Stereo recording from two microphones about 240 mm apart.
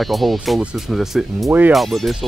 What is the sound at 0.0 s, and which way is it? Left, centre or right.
Speech, centre.